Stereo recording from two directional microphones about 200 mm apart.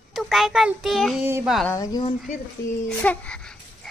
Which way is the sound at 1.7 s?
20° left (ahead or behind).